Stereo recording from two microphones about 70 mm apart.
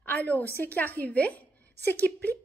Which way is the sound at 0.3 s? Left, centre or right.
Left.